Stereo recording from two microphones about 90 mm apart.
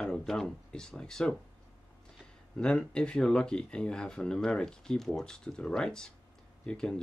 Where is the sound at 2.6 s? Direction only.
10° left (ahead or behind).